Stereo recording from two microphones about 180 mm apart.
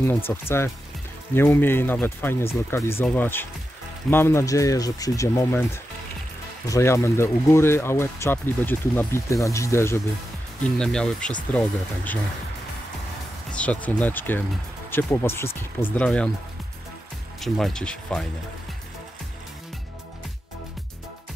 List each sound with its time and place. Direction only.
0.0 s speech: 15° left (ahead or behind)
6.7 s speech: 15° left (ahead or behind)
10.8 s speech: 5° left (ahead or behind)
13.5 s speech: 5° left (ahead or behind)
17.4 s speech: centre (ahead or behind)